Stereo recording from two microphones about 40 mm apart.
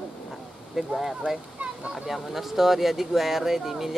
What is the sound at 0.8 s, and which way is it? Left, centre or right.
Speech, centre.